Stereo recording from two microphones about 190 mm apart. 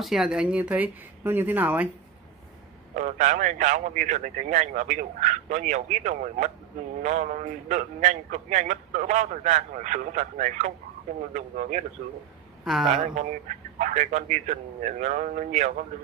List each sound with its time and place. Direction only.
0.0 s speech: centre (ahead or behind)
3.0 s a man's voice: 40° right (ahead or behind)
12.7 s speech: 5° right (ahead or behind)
13.0 s a man's voice: 40° right (ahead or behind)